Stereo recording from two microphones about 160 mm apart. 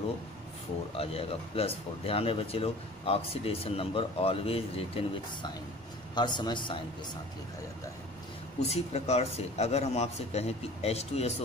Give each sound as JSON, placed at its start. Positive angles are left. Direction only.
{"t": 0.9, "sound": "a man's voice", "side_deg": 35}
{"t": 8.6, "sound": "speech", "side_deg": 40}